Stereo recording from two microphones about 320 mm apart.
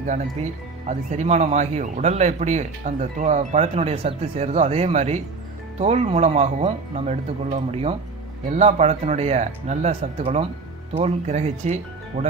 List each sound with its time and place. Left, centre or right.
0.0 s speech: right